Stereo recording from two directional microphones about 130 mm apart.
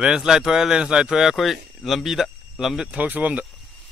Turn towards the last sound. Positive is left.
turn(degrees=-10)  # may be behind; listen again after turning